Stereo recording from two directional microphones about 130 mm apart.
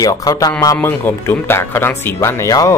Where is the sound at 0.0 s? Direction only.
30° left (ahead or behind).